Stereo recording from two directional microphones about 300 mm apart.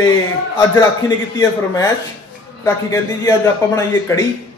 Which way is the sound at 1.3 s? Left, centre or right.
Centre.